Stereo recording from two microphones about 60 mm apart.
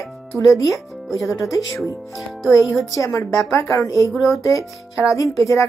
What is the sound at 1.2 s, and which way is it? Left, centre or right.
Speech, left.